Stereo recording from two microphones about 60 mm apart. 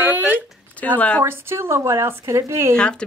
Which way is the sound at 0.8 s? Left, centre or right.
Left.